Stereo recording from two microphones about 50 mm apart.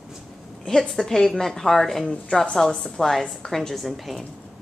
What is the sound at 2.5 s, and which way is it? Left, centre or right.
Speech, centre.